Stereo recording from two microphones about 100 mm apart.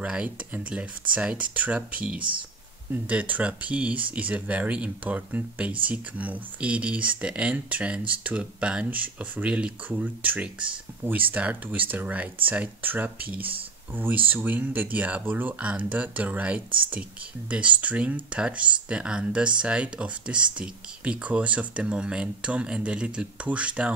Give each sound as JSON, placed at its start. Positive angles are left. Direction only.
{"t": 0.0, "sound": "speech", "side_deg": -10}